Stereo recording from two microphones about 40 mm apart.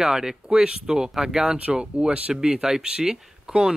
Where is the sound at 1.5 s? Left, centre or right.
Right.